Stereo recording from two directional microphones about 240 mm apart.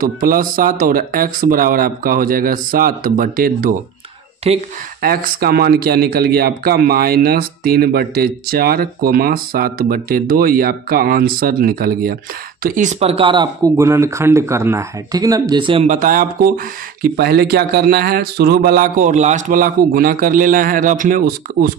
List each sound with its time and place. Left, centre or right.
0.0 s speech: right
4.4 s speech: right
5.0 s speech: right